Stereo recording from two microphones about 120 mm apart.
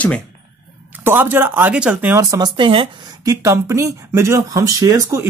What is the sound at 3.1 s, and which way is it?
Speech, 30° right (ahead or behind).